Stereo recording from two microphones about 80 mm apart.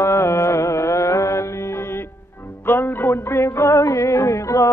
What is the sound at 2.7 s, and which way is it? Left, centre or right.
Music, left.